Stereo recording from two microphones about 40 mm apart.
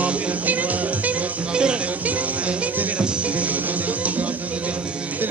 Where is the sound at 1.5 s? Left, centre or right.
Right.